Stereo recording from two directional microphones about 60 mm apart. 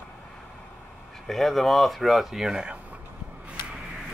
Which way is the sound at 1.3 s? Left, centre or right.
Centre.